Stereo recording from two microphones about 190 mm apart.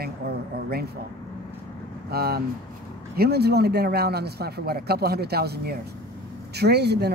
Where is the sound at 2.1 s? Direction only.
55° right (ahead or behind).